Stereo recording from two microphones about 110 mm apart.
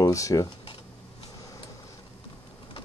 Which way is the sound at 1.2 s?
30° left (ahead or behind).